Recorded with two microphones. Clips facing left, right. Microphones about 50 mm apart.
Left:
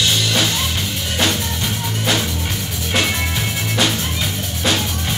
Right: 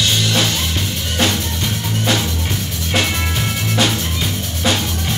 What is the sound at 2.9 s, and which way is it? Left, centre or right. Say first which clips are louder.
Music: even; centre.